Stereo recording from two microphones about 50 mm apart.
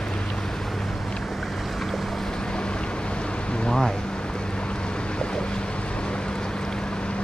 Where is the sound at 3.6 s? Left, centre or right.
Centre.